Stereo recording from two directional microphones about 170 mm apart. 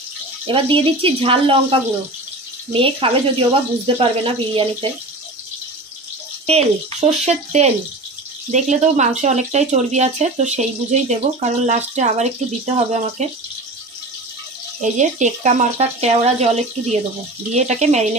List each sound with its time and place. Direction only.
0.5 s speech: 30° right (ahead or behind)
6.4 s speech: 40° right (ahead or behind)
14.8 s speech: 45° right (ahead or behind)